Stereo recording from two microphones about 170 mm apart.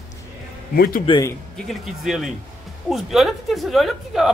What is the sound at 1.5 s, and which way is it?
A woman's voice, centre (ahead or behind).